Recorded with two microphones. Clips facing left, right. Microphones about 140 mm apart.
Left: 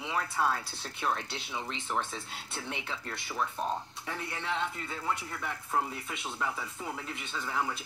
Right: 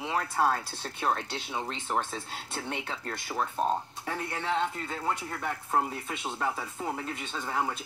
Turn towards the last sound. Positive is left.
turn(degrees=-40)  # may be behind; listen again after turning